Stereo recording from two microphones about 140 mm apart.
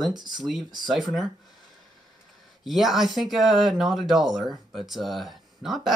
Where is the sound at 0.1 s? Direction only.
30° right (ahead or behind).